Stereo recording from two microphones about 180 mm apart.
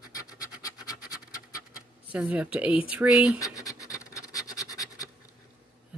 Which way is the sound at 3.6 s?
20° left (ahead or behind).